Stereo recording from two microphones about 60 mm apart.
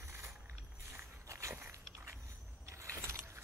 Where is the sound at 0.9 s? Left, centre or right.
Right.